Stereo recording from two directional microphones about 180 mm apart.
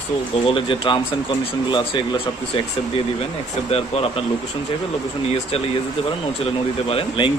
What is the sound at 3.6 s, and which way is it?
Speech, 35° left (ahead or behind).